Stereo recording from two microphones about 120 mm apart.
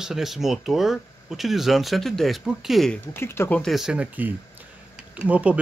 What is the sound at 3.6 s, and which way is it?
Speech, centre (ahead or behind).